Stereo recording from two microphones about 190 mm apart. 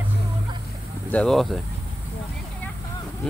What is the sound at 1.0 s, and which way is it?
Speech, 5° left (ahead or behind).